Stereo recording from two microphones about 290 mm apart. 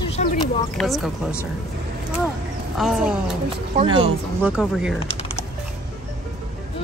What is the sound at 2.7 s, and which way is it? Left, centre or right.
Music, centre.